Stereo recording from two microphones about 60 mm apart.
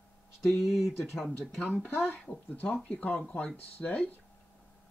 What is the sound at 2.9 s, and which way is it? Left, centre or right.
Speech, left.